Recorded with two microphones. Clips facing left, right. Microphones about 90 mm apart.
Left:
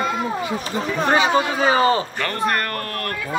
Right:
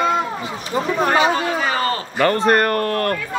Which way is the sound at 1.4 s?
20° left (ahead or behind).